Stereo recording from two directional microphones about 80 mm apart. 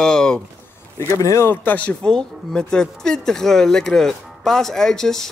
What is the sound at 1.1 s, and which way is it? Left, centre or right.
Speech, left.